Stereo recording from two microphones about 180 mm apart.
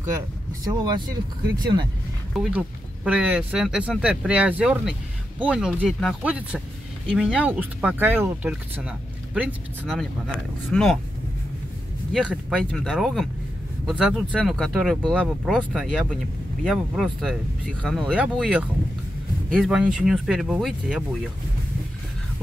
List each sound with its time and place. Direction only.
0.8 s speech: 25° right (ahead or behind)
2.3 s speech: 5° right (ahead or behind)
12.1 s speech: centre (ahead or behind)